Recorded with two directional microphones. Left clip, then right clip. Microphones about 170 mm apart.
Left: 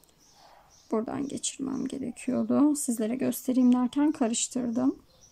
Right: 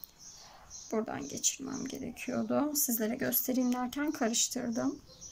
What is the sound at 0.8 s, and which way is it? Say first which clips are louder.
Speech: left 5 dB; 25° left (ahead or behind).